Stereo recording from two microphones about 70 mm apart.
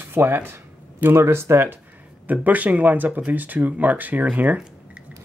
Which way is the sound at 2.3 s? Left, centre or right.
Right.